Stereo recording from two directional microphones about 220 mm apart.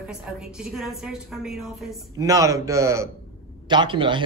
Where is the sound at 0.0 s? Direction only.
5° right (ahead or behind).